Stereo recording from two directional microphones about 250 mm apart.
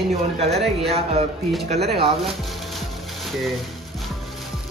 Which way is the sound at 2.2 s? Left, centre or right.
Centre.